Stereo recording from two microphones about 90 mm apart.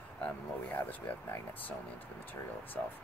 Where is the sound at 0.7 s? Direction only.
20° left (ahead or behind).